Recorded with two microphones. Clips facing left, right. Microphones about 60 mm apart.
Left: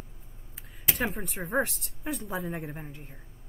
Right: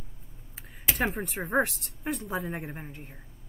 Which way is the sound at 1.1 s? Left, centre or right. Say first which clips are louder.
Right 2 dB; centre.